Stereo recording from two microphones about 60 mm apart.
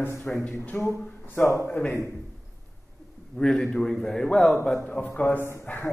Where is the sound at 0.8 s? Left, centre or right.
Left.